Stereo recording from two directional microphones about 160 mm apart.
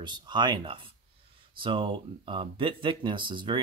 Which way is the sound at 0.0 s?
25° right (ahead or behind).